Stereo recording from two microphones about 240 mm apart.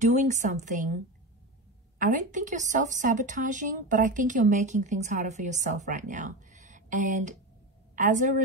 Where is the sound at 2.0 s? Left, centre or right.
Right.